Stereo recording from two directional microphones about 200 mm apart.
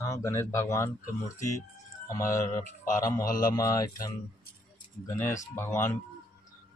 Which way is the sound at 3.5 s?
15° left (ahead or behind).